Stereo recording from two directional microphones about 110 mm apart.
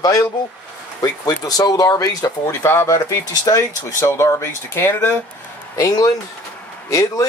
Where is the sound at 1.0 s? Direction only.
35° left (ahead or behind).